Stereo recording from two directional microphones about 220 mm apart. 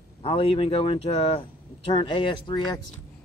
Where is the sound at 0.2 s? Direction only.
25° left (ahead or behind).